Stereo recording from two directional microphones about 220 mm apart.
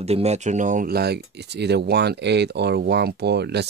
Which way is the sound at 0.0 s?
30° right (ahead or behind).